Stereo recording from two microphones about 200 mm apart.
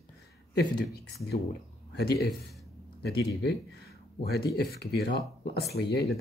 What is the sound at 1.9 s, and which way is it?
Speech, 55° left (ahead or behind).